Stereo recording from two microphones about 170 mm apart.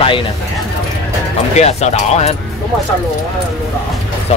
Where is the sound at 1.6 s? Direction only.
40° left (ahead or behind).